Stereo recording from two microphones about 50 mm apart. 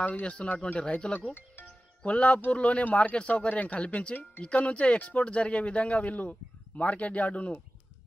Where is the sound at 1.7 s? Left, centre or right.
Left.